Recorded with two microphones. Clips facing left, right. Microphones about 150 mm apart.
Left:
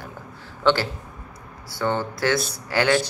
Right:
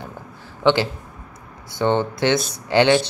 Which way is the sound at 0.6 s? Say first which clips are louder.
Right 3 dB; 15° right (ahead or behind).